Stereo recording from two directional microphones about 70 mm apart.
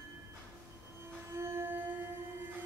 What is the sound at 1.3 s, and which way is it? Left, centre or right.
Music, right.